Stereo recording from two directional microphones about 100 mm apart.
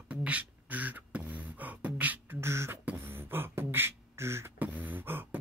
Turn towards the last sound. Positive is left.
turn(degrees=-20)  # may be behind; listen again after turning